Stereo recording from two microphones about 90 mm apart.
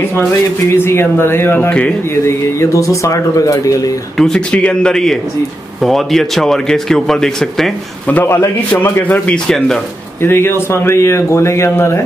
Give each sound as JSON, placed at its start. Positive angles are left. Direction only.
{"t": 0.7, "sound": "speech", "side_deg": 25}
{"t": 4.2, "sound": "a man's voice", "side_deg": 10}
{"t": 8.3, "sound": "speech", "side_deg": 30}
{"t": 10.2, "sound": "speech", "side_deg": 25}